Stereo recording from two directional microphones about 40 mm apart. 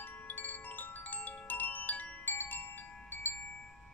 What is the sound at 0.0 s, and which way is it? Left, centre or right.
Wind chime, left.